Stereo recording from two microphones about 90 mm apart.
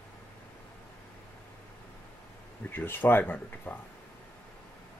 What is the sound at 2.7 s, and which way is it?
Speech, 20° left (ahead or behind).